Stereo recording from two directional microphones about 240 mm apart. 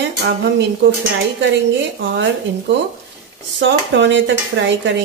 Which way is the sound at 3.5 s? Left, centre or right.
Right.